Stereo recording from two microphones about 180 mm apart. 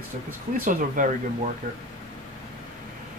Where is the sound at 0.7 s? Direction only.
45° right (ahead or behind).